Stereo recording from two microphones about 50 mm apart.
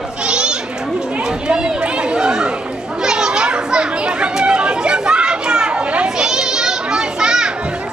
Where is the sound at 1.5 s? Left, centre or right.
Right.